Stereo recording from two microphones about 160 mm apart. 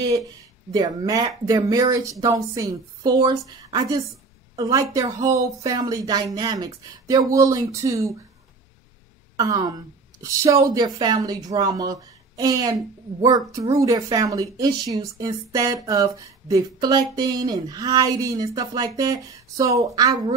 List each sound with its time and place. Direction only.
0.7 s speech: 25° right (ahead or behind)
9.4 s speech: 20° right (ahead or behind)